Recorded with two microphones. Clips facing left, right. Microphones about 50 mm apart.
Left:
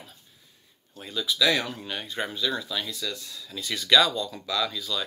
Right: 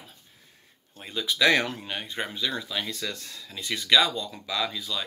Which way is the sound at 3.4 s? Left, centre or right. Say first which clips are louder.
Even; right.